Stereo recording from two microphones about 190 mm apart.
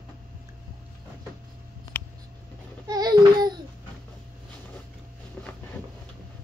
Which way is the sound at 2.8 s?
20° right (ahead or behind).